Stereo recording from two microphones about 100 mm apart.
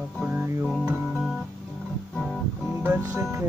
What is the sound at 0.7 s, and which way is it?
Music, centre (ahead or behind).